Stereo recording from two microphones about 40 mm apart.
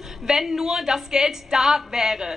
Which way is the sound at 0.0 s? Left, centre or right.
Centre.